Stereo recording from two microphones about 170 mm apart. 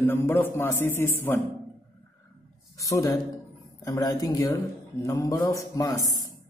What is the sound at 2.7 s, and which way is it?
Speech, 20° left (ahead or behind).